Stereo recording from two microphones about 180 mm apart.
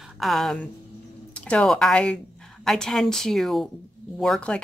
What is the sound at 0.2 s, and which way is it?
Speech, centre (ahead or behind).